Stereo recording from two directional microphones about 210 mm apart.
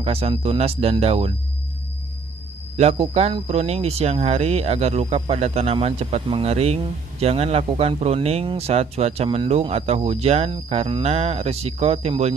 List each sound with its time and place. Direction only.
0.0 s speech: 25° right (ahead or behind)
2.8 s speech: 30° right (ahead or behind)